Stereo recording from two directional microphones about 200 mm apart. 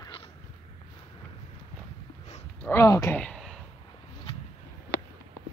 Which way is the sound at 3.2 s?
5° left (ahead or behind).